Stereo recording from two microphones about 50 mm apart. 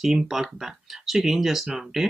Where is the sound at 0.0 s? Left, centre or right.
Centre.